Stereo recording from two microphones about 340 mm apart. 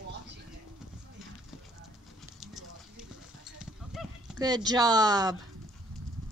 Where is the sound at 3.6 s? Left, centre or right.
Centre.